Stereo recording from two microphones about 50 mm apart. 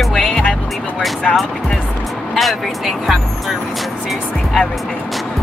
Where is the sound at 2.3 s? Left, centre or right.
Centre.